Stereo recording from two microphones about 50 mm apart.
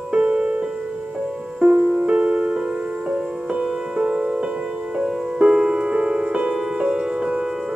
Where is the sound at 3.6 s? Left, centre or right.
Centre.